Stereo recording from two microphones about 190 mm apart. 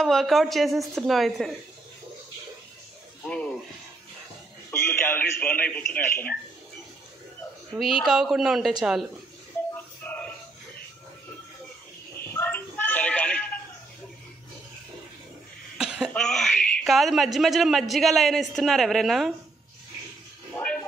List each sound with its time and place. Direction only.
0.0 s a man's voice: centre (ahead or behind)
3.3 s music: 5° left (ahead or behind)
4.6 s a man's voice: 10° left (ahead or behind)
7.7 s a man's voice: centre (ahead or behind)
10.0 s a sound: 10° left (ahead or behind)
12.4 s a sound: 10° left (ahead or behind)
15.8 s cough: 5° right (ahead or behind)
16.1 s a man's voice: 5° left (ahead or behind)
20.5 s a sound: 5° left (ahead or behind)